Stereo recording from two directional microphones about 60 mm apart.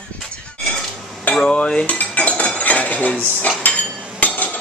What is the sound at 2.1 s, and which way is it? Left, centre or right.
Cutlery, left.